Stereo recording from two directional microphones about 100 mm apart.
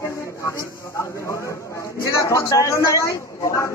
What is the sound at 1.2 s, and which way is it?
A man's voice, 30° left (ahead or behind).